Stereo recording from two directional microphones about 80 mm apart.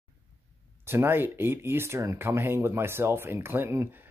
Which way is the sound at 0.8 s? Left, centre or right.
Right.